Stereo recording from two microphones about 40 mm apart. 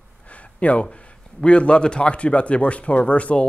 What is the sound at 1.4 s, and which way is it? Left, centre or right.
Speech, left.